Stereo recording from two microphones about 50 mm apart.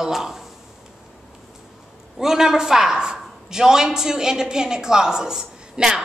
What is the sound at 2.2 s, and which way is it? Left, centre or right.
Speech, centre.